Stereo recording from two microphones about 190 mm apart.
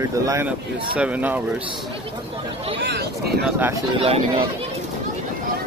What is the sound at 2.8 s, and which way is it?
Speech, 60° right (ahead or behind).